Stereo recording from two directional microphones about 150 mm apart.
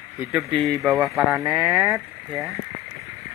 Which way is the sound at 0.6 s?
Centre (ahead or behind).